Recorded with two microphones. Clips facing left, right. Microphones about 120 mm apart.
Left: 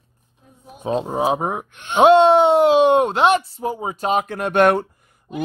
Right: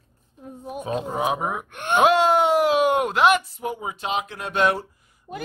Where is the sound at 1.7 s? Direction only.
55° right (ahead or behind).